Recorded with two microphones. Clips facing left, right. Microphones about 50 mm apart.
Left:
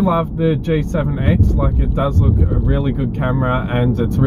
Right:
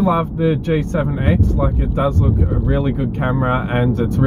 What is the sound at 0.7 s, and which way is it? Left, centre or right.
Speech, centre.